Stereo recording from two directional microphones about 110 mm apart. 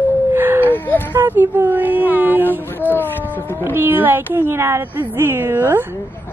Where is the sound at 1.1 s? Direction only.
20° right (ahead or behind).